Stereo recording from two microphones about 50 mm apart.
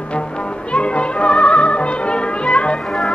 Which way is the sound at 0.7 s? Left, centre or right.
Left.